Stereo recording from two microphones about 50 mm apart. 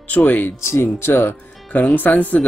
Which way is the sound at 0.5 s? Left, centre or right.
Left.